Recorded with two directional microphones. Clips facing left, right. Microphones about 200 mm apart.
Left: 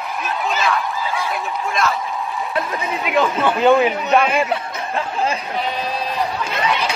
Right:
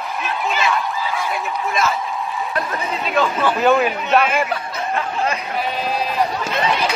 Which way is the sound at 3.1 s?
20° left (ahead or behind).